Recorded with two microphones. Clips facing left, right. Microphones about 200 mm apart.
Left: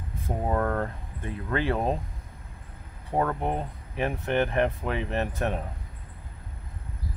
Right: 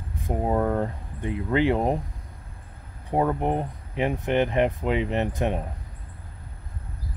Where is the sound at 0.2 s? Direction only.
15° right (ahead or behind).